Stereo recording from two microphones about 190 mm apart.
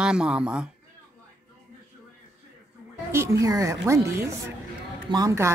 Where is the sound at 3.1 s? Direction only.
15° right (ahead or behind).